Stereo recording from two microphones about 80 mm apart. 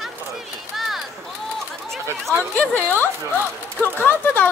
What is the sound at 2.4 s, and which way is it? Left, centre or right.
Speech, left.